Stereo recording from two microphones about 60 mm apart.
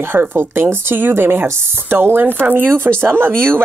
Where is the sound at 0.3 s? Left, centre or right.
Right.